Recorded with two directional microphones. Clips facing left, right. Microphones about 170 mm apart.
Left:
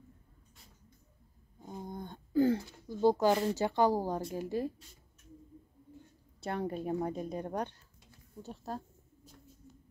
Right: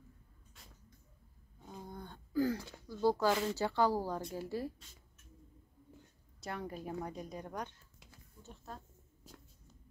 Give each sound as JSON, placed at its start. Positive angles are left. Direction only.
{"t": 1.7, "sound": "a sound", "side_deg": 20}
{"t": 4.3, "sound": "a woman's voice", "side_deg": 20}
{"t": 6.4, "sound": "a woman's voice", "side_deg": 30}